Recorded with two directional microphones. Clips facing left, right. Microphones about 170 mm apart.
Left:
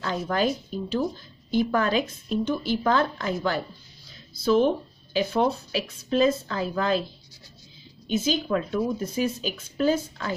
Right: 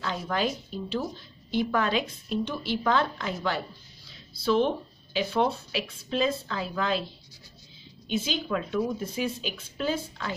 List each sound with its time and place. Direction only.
0.0 s a woman's voice: 45° left (ahead or behind)
8.1 s a woman's voice: 40° left (ahead or behind)